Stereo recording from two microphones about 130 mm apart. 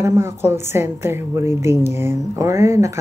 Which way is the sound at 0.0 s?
20° right (ahead or behind).